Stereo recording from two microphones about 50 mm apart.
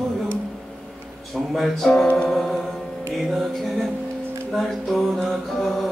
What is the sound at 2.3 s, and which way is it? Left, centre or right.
Music, centre.